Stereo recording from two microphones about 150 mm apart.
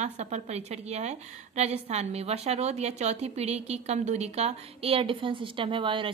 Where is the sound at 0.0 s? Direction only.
50° right (ahead or behind).